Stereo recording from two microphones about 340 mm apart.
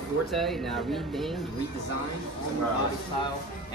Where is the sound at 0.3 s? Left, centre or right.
Centre.